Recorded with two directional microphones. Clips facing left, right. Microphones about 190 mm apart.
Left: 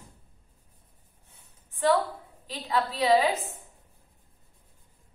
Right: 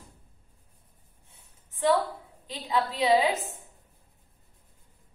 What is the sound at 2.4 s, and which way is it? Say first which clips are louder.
A woman's voice: even; 20° right (ahead or behind).